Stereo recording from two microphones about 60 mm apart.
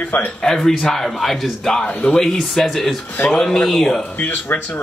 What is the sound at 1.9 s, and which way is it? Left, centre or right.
Speech, left.